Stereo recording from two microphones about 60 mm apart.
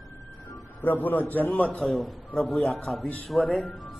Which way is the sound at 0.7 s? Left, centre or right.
Left.